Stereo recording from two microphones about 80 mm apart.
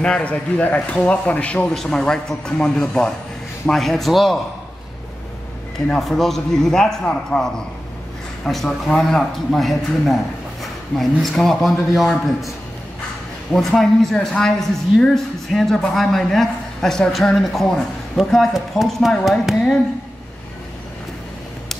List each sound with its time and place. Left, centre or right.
0.0 s a man's voice: centre
5.9 s a man's voice: centre